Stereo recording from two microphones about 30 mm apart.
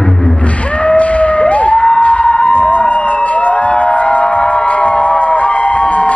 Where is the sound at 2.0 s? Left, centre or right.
Left.